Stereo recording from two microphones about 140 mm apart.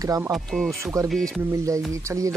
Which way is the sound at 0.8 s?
20° right (ahead or behind).